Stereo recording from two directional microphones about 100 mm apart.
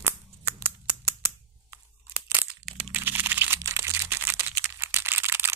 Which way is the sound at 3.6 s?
30° right (ahead or behind).